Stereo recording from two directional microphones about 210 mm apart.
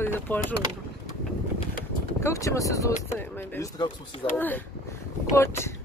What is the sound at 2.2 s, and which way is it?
Speech, 15° left (ahead or behind).